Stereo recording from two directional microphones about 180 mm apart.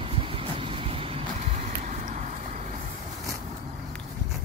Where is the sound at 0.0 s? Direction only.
30° right (ahead or behind).